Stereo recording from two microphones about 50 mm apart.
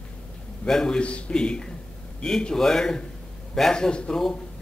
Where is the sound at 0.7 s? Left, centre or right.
Centre.